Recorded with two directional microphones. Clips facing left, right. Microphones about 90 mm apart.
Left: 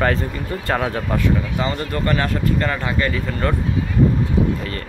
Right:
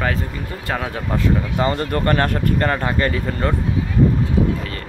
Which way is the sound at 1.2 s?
40° right (ahead or behind).